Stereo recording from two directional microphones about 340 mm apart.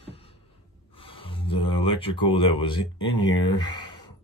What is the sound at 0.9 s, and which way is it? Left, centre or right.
Speech, centre.